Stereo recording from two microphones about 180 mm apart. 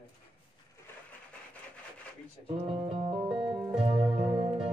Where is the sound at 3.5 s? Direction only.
5° right (ahead or behind).